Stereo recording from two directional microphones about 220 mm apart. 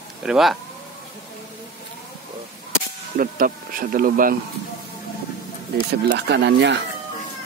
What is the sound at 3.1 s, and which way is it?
Speech, 40° right (ahead or behind).